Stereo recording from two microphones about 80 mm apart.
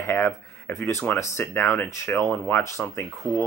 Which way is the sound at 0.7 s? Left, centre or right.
Left.